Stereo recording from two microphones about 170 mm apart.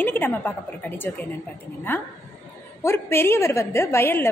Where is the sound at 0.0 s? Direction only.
10° left (ahead or behind).